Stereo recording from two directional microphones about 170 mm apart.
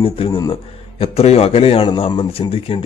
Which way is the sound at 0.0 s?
30° left (ahead or behind).